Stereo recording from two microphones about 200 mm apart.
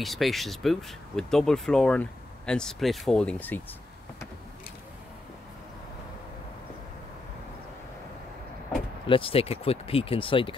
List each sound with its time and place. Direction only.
0.0 s speech: centre (ahead or behind)
9.0 s speech: 25° left (ahead or behind)